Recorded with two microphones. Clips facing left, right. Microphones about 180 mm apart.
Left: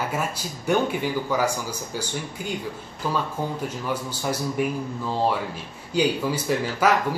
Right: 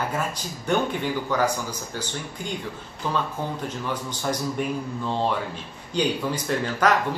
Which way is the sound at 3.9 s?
10° left (ahead or behind).